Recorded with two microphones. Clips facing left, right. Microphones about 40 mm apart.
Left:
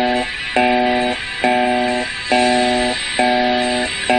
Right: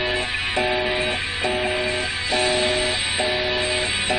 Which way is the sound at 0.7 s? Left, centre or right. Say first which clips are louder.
Left 6 dB; left.